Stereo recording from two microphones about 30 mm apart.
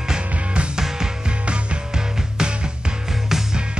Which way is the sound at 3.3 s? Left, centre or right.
Centre.